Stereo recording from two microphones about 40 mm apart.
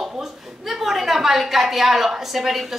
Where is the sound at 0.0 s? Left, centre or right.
Centre.